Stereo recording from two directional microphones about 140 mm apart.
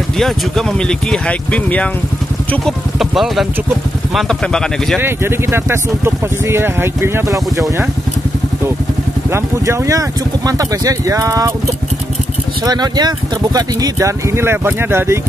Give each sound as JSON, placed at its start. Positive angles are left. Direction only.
{"t": 0.2, "sound": "speech", "side_deg": 5}
{"t": 4.9, "sound": "speech", "side_deg": -15}
{"t": 9.3, "sound": "speech", "side_deg": -20}
{"t": 12.6, "sound": "speech", "side_deg": -30}